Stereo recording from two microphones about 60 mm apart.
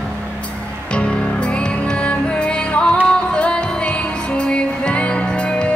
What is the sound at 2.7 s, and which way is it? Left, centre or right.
Music, centre.